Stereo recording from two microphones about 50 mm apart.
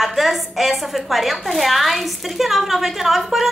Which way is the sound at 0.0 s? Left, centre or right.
Centre.